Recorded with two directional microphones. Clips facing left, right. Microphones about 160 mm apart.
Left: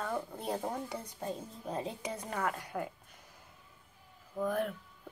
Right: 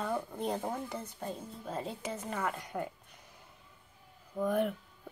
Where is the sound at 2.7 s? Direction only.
5° right (ahead or behind).